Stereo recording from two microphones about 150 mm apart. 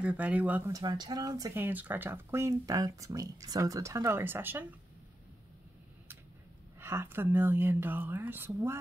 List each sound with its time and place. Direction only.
0.0 s speech: 10° right (ahead or behind)
0.7 s speech: 25° right (ahead or behind)
1.6 s speech: 10° right (ahead or behind)
6.8 s speech: 15° right (ahead or behind)